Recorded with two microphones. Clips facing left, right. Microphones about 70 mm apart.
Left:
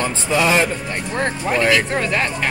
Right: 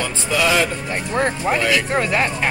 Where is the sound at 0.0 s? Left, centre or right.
Left.